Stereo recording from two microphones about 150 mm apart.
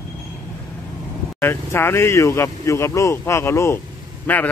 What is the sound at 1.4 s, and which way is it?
Speech, 15° left (ahead or behind).